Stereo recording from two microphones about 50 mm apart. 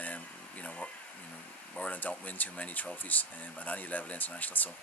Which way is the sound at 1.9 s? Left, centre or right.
Left.